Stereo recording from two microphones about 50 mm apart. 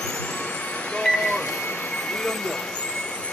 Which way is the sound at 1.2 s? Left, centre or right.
Left.